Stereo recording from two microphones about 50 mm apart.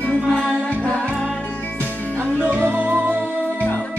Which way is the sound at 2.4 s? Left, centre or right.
Right.